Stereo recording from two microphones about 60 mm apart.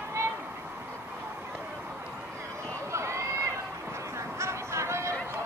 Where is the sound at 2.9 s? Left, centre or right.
Right.